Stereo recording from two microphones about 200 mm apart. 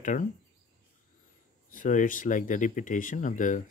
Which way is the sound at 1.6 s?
45° left (ahead or behind).